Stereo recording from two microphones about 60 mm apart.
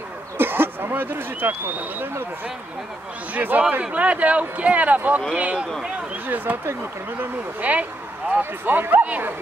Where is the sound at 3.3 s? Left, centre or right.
Right.